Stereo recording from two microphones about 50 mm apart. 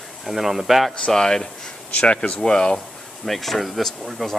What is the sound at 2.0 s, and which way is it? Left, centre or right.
Speech, left.